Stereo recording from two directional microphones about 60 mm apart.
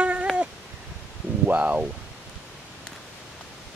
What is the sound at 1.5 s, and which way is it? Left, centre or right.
Speech, right.